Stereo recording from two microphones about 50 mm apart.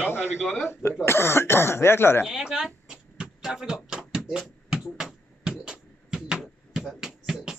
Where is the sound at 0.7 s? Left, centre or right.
Left.